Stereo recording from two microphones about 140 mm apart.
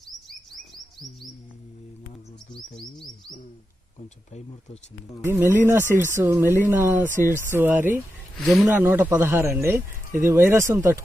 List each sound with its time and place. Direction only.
2.5 s speech: 5° left (ahead or behind)
4.3 s speech: 50° left (ahead or behind)
5.2 s speech: 15° right (ahead or behind)
8.4 s speech: 10° left (ahead or behind)
8.6 s speech: 15° right (ahead or behind)